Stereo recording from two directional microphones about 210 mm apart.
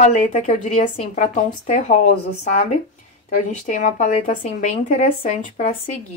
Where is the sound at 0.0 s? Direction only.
35° left (ahead or behind).